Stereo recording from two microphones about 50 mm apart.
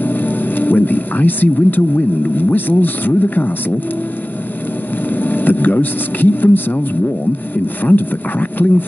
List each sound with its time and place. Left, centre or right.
0.0 s speech: left
5.1 s speech: left